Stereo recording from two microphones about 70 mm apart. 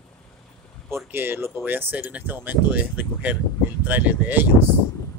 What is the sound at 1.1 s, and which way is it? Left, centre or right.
Speech, right.